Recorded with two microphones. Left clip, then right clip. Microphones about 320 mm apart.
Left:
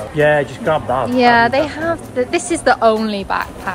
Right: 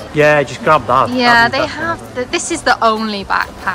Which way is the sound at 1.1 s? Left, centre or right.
Centre.